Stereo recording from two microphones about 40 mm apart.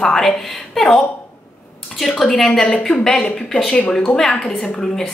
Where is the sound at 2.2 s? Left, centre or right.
Centre.